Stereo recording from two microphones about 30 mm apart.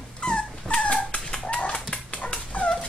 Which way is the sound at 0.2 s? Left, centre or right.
Left.